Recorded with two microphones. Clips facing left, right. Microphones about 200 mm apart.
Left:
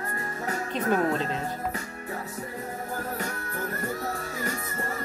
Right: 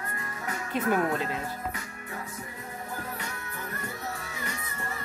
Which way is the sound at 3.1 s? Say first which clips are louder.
Left 6 dB; 45° left (ahead or behind).